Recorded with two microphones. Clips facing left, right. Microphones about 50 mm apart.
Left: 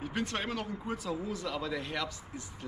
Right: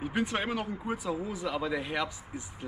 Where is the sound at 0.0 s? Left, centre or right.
Centre.